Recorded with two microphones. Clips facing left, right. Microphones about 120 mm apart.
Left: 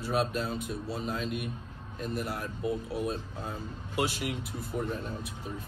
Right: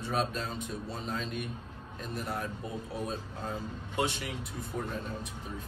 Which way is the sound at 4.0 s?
5° left (ahead or behind).